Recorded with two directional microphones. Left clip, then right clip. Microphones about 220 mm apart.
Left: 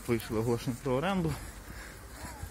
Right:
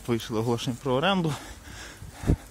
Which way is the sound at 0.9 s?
40° right (ahead or behind).